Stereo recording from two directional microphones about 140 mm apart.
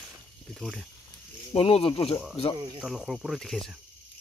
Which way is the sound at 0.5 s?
Centre (ahead or behind).